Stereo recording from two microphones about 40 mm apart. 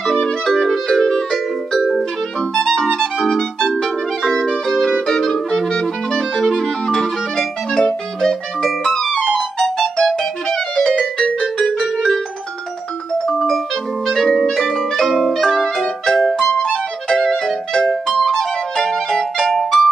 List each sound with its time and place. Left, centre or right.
0.5 s music: centre
2.5 s music: centre
5.7 s clarinet: centre
6.9 s music: centre; by 11.6 s left
11.6 s keyboard: centre
14.0 s music: centre
14.3 s music: centre
17.2 s music: centre